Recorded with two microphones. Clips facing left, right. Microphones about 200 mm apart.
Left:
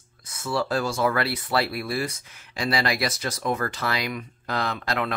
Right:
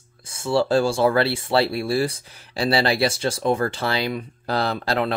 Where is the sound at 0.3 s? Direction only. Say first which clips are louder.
Right 6 dB; 30° right (ahead or behind).